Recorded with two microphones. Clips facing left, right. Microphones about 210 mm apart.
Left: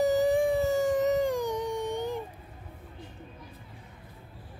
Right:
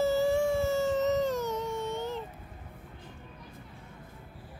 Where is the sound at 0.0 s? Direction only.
15° left (ahead or behind).